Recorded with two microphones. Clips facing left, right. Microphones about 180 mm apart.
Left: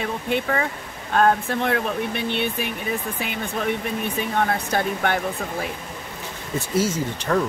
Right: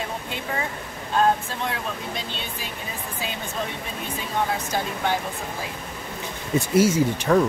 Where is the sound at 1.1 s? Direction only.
60° left (ahead or behind).